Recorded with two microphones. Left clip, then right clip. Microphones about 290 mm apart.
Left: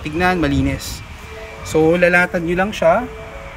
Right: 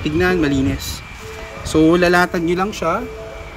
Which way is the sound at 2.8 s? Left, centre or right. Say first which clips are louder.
Left 8 dB; left.